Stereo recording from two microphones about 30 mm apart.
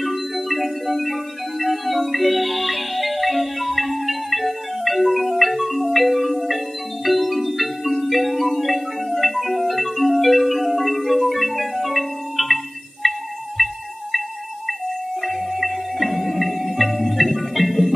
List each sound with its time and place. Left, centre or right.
0.0 s music: centre
7.1 s marimba: centre
13.0 s music: centre
15.2 s music: centre